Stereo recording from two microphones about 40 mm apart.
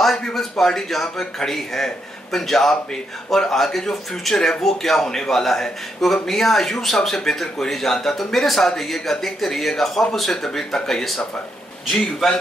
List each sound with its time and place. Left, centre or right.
0.3 s speech: centre